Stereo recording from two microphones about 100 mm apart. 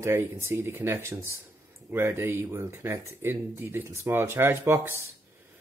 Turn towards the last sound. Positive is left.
turn(degrees=-20)  # may be behind; listen again after turning